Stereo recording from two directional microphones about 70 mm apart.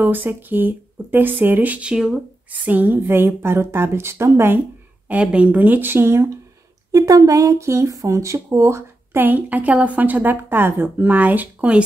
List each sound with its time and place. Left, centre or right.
0.0 s speech: right; by 2.1 s centre
2.5 s speech: right
5.0 s speech: centre; by 6.2 s right
6.9 s speech: right
9.2 s speech: right